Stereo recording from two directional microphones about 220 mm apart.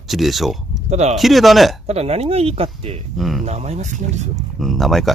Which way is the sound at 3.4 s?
30° right (ahead or behind).